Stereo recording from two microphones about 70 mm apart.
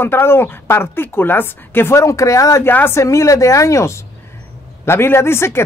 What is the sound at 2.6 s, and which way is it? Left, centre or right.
Speech, left.